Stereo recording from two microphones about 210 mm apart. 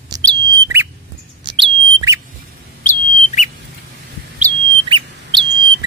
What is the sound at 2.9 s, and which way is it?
Bird, 35° left (ahead or behind).